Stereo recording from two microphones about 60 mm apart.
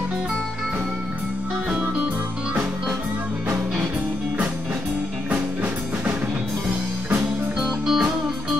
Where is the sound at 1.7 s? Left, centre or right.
Centre.